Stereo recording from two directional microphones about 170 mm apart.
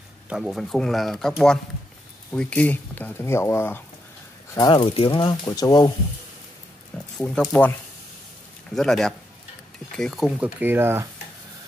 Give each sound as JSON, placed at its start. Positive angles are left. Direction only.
{"t": 0.3, "sound": "speech", "side_deg": 0}
{"t": 4.6, "sound": "speech", "side_deg": 30}
{"t": 7.2, "sound": "speech", "side_deg": 5}
{"t": 8.7, "sound": "speech", "side_deg": 0}